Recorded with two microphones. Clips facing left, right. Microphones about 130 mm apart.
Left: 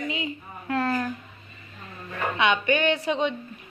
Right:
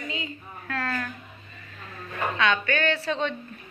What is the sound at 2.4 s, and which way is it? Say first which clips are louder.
Speech: left 3 dB; 20° left (ahead or behind).